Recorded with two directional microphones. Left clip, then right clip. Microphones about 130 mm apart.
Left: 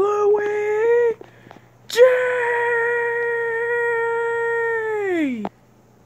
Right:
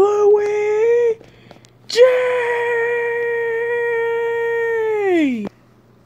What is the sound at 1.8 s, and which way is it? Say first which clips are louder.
Wail: right 2 dB; 5° right (ahead or behind).